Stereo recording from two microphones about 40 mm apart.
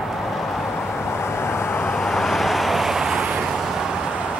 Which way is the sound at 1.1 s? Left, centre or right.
Left.